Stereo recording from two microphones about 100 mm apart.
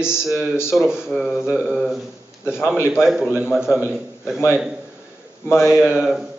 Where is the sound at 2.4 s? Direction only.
25° left (ahead or behind).